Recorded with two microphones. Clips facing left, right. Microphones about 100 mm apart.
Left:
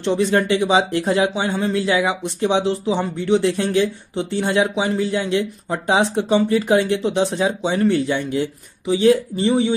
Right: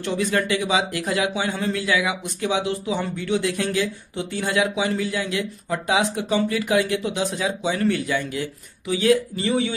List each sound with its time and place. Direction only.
0.0 s speech: 25° left (ahead or behind)